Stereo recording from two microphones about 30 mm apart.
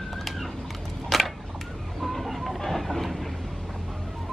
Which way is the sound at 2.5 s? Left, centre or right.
Centre.